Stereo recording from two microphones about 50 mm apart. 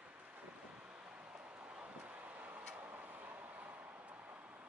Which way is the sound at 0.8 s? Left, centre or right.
Right.